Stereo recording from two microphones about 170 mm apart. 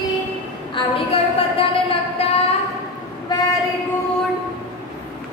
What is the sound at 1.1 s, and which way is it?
Music, 35° left (ahead or behind).